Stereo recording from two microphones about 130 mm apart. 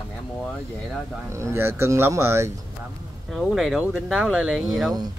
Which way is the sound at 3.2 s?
Centre (ahead or behind).